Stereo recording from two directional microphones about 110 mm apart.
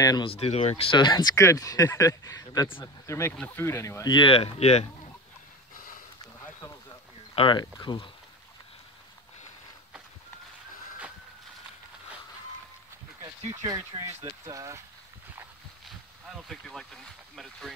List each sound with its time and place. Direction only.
0.2 s speech: 65° left (ahead or behind)
0.9 s speech: 40° left (ahead or behind)
4.1 s speech: 50° left (ahead or behind); by 4.8 s 70° left (ahead or behind)
7.3 s speech: 50° left (ahead or behind)
13.5 s speech: 30° right (ahead or behind)
16.3 s speech: centre (ahead or behind)